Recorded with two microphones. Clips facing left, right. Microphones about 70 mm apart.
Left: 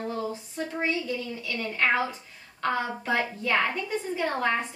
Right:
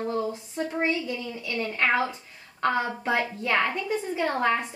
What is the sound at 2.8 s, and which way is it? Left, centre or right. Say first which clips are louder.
Speech: right 1 dB; right.